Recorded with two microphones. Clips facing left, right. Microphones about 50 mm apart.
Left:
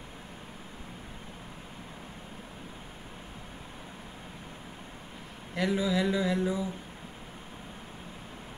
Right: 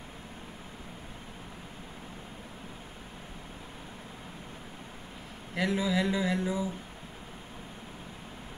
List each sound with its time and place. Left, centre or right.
5.5 s speech: centre